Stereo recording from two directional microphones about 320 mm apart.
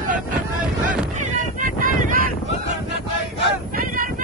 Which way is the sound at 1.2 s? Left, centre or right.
Right.